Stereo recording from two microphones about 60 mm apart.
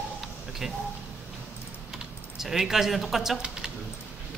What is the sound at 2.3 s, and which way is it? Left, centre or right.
A man's voice, centre.